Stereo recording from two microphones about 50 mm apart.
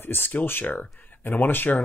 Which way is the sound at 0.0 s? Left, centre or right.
Left.